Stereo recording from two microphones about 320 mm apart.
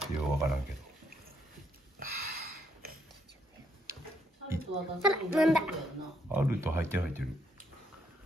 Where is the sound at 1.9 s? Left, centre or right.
Right.